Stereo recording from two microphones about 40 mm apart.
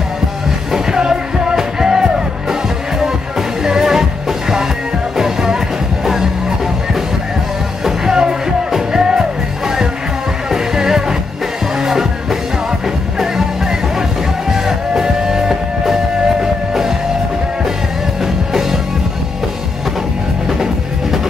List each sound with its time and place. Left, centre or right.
0.9 s music: centre
3.6 s music: centre
5.1 s music: centre
7.8 s music: centre
10.5 s music: centre
14.5 s music: centre
18.2 s music: centre